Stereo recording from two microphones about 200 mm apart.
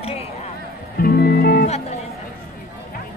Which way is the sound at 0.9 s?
50° left (ahead or behind).